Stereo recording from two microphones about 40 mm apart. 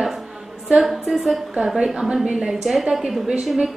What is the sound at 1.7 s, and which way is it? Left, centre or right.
A woman's voice, centre.